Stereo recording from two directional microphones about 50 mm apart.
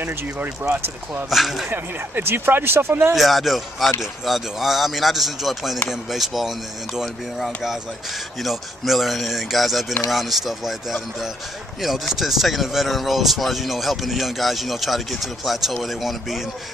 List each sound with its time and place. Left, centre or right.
0.0 s speech: right
1.3 s speech: centre
1.7 s speech: right
3.2 s speech: centre